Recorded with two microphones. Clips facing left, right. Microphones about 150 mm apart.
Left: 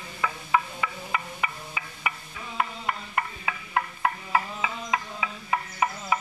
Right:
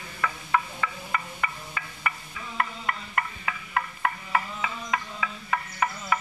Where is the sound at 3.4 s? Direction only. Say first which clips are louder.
Left 1 dB; 20° left (ahead or behind).